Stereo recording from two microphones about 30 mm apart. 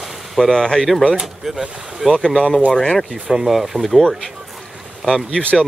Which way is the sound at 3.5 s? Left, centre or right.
Centre.